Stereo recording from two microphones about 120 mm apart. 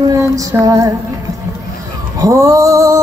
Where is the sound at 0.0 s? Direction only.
25° right (ahead or behind).